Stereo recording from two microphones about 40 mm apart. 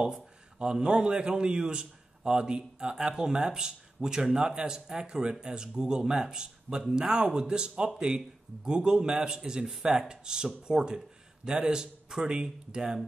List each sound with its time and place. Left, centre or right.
0.0 s a man's voice: centre